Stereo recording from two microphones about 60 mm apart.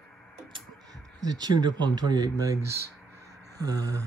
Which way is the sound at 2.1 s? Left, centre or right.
Right.